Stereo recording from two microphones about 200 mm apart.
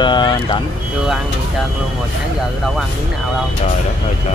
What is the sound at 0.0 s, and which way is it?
Speech, 20° left (ahead or behind).